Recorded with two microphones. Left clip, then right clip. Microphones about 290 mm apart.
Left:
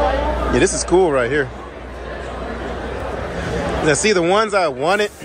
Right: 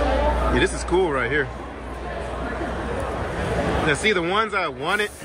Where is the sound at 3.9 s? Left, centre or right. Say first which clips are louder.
Left 8 dB; centre.